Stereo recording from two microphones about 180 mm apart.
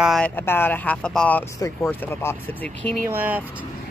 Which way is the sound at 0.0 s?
Centre (ahead or behind).